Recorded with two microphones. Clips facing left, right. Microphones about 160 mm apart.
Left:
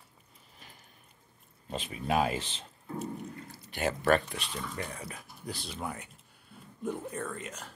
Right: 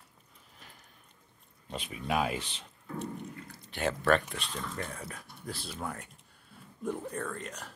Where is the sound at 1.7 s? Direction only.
30° left (ahead or behind).